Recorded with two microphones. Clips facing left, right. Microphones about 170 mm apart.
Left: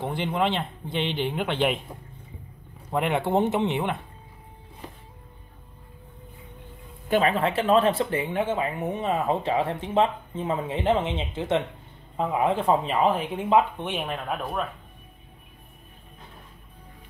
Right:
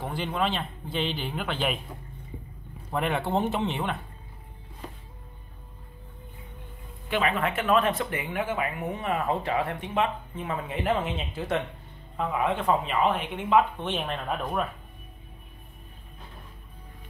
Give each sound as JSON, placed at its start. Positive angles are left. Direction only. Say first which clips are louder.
{"t": 0.0, "sound": "a man's voice", "louder": "left 3 dB", "side_deg": 20}
{"t": 2.9, "sound": "speech", "louder": "left 3 dB", "side_deg": 20}
{"t": 7.1, "sound": "speech", "louder": "left 4 dB", "side_deg": 40}
{"t": 13.7, "sound": "speech", "louder": "left 1 dB", "side_deg": 10}